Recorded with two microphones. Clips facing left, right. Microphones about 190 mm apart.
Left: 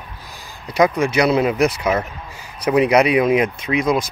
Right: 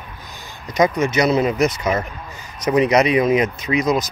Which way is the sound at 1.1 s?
10° left (ahead or behind).